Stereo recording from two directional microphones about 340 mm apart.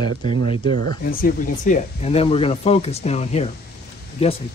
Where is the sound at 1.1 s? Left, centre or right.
Left.